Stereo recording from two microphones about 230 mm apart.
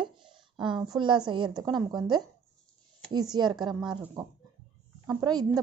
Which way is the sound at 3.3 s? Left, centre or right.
Centre.